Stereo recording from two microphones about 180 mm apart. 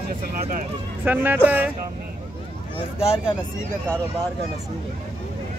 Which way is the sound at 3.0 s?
35° left (ahead or behind).